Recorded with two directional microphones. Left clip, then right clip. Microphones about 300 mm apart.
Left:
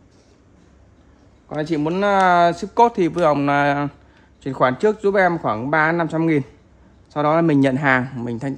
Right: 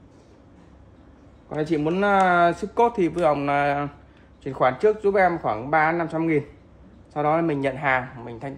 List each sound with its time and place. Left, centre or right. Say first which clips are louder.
1.5 s speech: left 2 dB; left